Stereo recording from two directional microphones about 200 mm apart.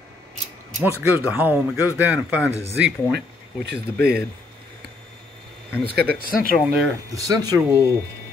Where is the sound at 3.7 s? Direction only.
50° right (ahead or behind).